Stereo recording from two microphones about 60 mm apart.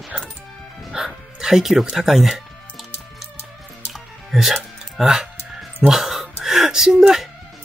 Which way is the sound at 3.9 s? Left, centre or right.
Centre.